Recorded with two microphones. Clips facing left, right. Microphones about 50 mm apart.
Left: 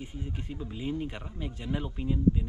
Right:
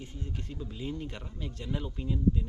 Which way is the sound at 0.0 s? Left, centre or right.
Centre.